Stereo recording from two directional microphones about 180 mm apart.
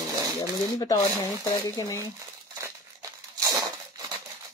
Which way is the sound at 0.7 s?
20° left (ahead or behind).